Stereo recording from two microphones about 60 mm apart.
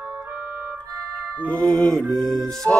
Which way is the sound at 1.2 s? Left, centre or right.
Left.